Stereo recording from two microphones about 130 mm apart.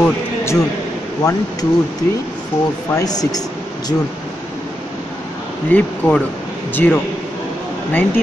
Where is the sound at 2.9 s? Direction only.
30° left (ahead or behind).